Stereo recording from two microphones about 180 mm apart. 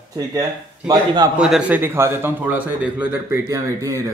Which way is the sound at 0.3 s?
20° right (ahead or behind).